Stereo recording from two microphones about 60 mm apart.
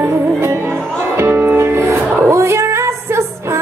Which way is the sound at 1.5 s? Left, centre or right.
Right.